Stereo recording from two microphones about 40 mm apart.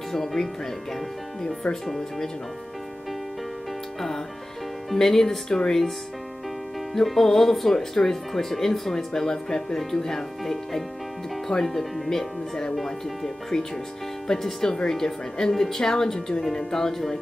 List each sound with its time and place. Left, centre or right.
0.1 s speech: centre
1.4 s speech: centre
4.9 s speech: centre
6.9 s speech: centre